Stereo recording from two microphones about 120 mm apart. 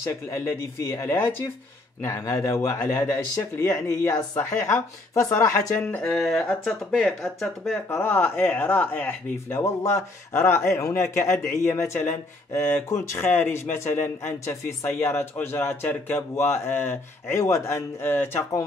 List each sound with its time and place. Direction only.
0.0 s a man's voice: 25° left (ahead or behind)
6.0 s speech: centre (ahead or behind)
7.9 s a man's voice: 15° left (ahead or behind)